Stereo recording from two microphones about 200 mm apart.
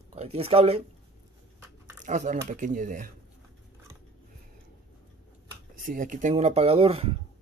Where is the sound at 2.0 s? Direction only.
40° right (ahead or behind).